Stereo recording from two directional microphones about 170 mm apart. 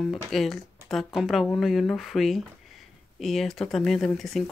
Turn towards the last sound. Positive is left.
turn(degrees=0)  # may be behind; listen again after turning